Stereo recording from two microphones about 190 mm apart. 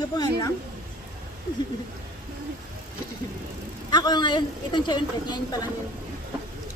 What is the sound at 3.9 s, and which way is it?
A woman's voice, 20° left (ahead or behind).